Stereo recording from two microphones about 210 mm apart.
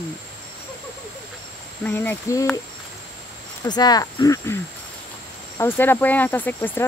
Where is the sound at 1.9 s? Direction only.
10° left (ahead or behind).